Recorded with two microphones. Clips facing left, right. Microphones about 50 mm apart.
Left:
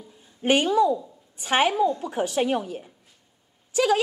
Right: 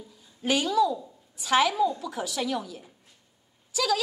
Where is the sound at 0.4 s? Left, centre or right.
Left.